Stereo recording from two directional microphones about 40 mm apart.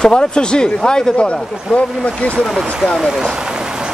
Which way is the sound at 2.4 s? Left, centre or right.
Centre.